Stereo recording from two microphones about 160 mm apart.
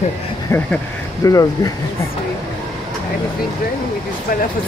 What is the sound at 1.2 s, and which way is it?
Speech, 20° left (ahead or behind).